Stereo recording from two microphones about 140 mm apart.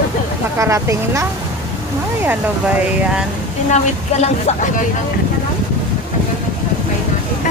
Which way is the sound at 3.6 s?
55° left (ahead or behind).